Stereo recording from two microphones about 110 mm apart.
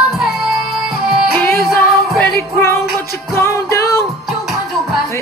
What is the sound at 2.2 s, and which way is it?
Music, 20° left (ahead or behind).